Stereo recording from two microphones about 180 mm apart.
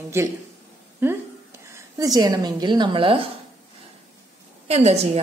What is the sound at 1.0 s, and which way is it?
A woman's voice, 10° right (ahead or behind).